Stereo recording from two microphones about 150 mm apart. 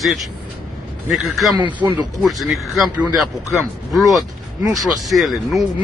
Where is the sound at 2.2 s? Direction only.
Centre (ahead or behind).